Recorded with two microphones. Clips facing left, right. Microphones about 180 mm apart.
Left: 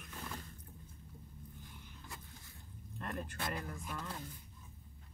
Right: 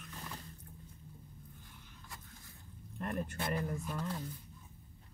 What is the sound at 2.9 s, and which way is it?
Speech, 25° right (ahead or behind).